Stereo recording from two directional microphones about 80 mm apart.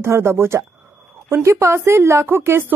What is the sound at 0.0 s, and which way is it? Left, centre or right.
A woman's voice, right.